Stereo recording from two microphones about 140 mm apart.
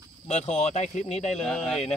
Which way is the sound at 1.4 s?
5° left (ahead or behind).